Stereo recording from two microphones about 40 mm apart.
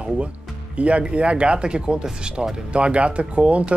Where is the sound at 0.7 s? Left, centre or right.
Right.